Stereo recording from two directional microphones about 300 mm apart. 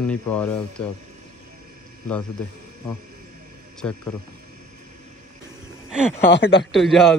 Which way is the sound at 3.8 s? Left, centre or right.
Centre.